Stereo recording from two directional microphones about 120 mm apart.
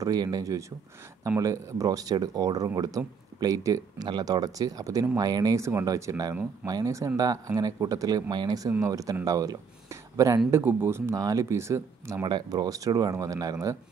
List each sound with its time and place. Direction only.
0.0 s speech: 30° right (ahead or behind)
12.3 s speech: 40° right (ahead or behind)